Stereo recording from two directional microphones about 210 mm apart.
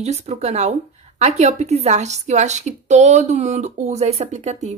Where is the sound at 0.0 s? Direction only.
30° right (ahead or behind).